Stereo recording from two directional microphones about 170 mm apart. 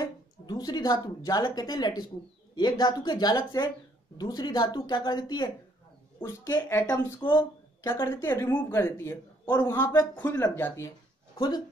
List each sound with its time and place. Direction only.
0.0 s a woman's voice: 20° left (ahead or behind)
11.3 s speech: 25° left (ahead or behind)